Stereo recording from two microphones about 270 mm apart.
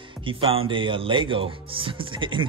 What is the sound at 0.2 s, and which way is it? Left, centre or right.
Speech, centre.